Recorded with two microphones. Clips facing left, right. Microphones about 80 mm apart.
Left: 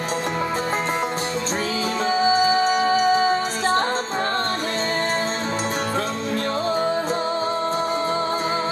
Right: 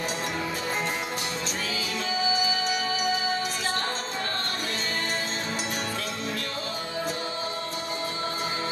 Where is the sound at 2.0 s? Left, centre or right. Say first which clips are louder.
Left 9 dB; left.